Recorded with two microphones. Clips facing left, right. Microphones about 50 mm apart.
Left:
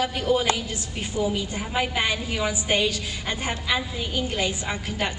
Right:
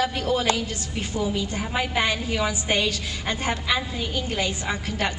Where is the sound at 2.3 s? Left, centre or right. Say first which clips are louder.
Even; centre.